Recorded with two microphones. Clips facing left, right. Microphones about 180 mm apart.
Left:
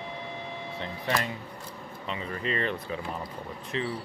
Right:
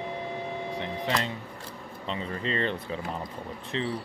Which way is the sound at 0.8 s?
20° right (ahead or behind).